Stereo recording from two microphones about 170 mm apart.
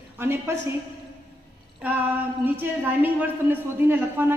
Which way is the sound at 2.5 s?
10° right (ahead or behind).